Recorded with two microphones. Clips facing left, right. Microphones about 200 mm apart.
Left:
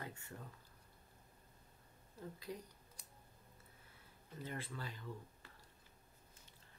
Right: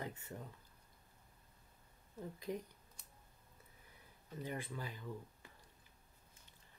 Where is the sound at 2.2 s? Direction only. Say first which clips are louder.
Right 4 dB; 20° right (ahead or behind).